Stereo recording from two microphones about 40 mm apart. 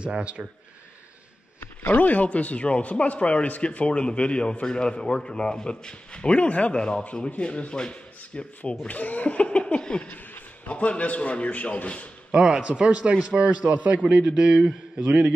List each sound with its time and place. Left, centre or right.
0.0 s speech: right
1.9 s a man's voice: left
6.7 s a man's voice: left
8.8 s a man's voice: left
12.3 s a man's voice: centre; by 14.3 s right
14.3 s a man's voice: centre